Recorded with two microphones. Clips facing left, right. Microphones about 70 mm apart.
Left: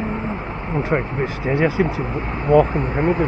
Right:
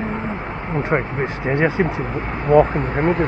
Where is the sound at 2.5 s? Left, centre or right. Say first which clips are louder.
Right 1 dB; right.